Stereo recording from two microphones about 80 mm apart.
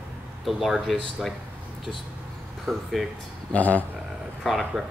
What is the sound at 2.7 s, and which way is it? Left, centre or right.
Speech, centre.